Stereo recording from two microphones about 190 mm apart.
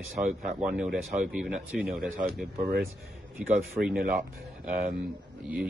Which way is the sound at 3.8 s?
45° right (ahead or behind).